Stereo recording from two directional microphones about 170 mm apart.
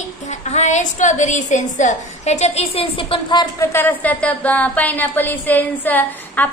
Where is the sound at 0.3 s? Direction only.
45° left (ahead or behind); by 3.6 s 25° left (ahead or behind).